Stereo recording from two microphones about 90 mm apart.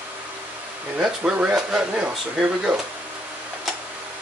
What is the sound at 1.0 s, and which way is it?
Speech, 10° right (ahead or behind).